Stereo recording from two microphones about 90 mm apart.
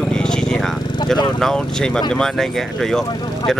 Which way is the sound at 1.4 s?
5° left (ahead or behind).